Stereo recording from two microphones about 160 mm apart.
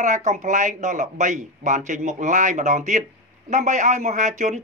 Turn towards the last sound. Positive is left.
turn(degrees=-50)  # may be behind; listen again after turning